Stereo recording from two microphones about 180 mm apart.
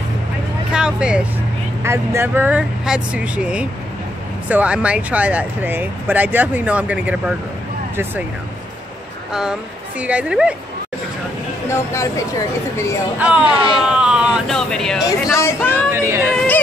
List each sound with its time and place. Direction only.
0.7 s vehicle: 5° right (ahead or behind)
1.8 s speech: 15° right (ahead or behind)
9.3 s speech: 5° right (ahead or behind)
11.7 s speech: 15° left (ahead or behind)
13.2 s speech: 5° right (ahead or behind)
13.7 s a sound: 5° right (ahead or behind)
15.3 s speech: 15° left (ahead or behind)
15.9 s a sound: 15° right (ahead or behind)